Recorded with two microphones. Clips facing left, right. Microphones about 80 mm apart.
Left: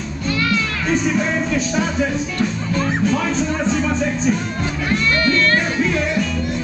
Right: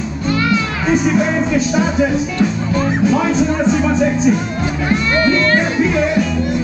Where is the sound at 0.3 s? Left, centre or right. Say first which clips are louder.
Right 4 dB; centre.